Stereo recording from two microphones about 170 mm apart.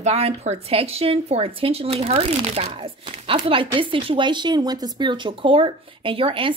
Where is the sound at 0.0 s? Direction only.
40° right (ahead or behind).